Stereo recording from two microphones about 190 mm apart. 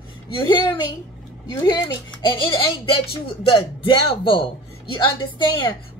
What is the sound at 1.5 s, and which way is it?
A woman's voice, 20° left (ahead or behind).